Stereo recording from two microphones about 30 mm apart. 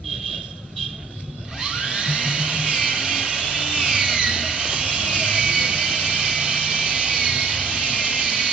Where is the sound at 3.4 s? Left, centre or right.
Right.